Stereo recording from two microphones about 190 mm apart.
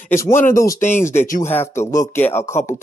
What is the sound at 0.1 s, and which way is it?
Speech, 15° left (ahead or behind).